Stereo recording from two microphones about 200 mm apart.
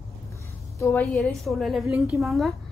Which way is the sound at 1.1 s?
Centre (ahead or behind).